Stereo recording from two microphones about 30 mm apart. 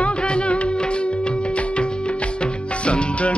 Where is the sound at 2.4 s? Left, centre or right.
Left.